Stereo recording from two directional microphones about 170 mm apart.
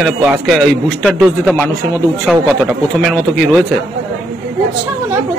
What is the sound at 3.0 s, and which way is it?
Speech, 5° left (ahead or behind).